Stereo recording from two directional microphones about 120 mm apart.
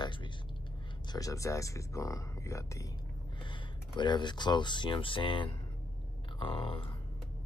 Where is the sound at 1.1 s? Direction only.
30° left (ahead or behind).